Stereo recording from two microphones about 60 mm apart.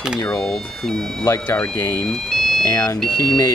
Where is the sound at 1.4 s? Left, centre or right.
Left.